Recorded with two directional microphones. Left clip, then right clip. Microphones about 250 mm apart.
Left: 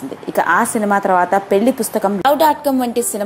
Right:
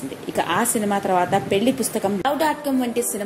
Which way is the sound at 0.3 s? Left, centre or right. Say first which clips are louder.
Left 7 dB; left.